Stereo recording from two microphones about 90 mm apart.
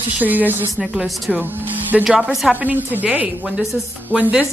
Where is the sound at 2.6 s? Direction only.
15° right (ahead or behind).